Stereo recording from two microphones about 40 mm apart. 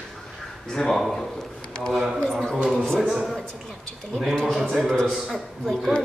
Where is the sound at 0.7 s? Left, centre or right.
Centre.